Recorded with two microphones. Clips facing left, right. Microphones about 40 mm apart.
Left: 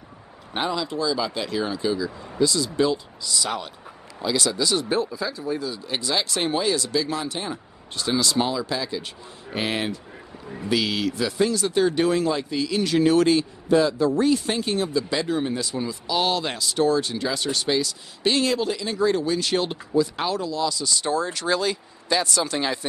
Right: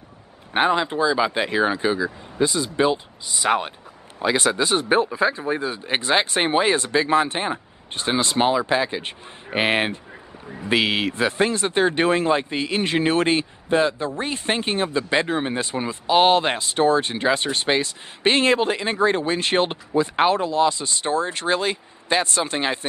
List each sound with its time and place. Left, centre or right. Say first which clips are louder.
0.5 s speech: right 6 dB; right